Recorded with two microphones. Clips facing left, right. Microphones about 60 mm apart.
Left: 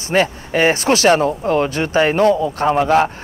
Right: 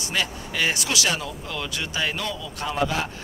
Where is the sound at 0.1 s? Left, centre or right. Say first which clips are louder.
Left 12 dB; left.